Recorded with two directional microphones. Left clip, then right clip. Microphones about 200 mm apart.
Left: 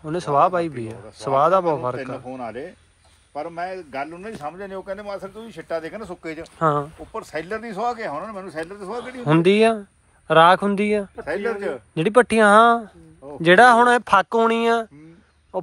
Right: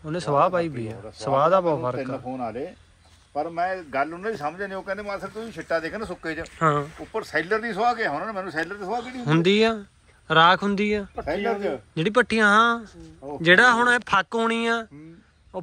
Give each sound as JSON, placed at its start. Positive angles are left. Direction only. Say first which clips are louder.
{"t": 0.0, "sound": "a man's voice", "louder": "left 3 dB", "side_deg": -5}
{"t": 3.3, "sound": "speech", "louder": "right 3 dB", "side_deg": 30}
{"t": 6.4, "sound": "speech", "louder": "left 2 dB", "side_deg": 10}
{"t": 7.1, "sound": "speech", "louder": "right 4 dB", "side_deg": 30}
{"t": 8.9, "sound": "a man's voice", "louder": "left 4 dB", "side_deg": 5}